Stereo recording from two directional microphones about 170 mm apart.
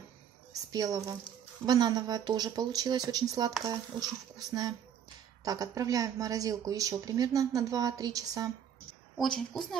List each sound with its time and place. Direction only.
0.5 s a sound: 20° right (ahead or behind)
1.7 s speech: 25° right (ahead or behind)
9.1 s a woman's voice: centre (ahead or behind)